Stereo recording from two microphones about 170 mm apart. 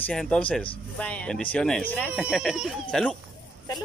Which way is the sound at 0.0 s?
5° left (ahead or behind).